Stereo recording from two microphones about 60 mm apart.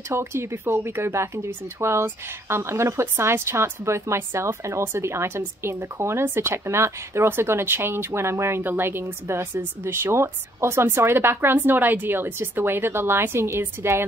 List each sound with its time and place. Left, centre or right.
0.1 s speech: right